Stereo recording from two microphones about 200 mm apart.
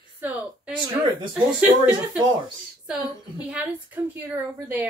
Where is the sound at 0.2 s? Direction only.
5° right (ahead or behind).